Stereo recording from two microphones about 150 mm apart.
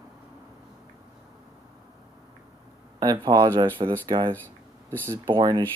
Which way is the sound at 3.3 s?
25° right (ahead or behind).